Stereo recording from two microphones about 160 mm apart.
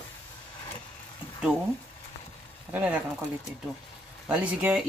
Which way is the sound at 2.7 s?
10° right (ahead or behind).